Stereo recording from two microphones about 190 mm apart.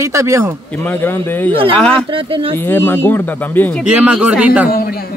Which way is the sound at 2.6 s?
10° left (ahead or behind).